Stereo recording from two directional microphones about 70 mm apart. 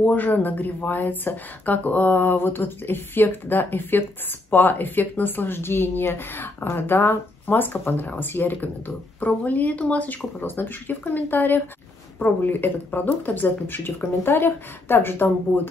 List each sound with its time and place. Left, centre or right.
0.0 s speech: left